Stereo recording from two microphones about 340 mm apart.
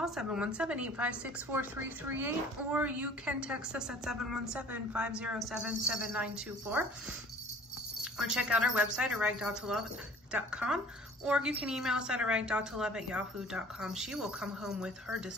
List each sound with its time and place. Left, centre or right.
0.0 s a woman's voice: centre
8.0 s a woman's voice: centre